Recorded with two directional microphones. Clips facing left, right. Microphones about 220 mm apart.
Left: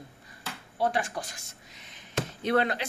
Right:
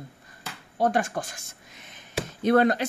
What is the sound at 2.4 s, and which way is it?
Speech, 45° right (ahead or behind).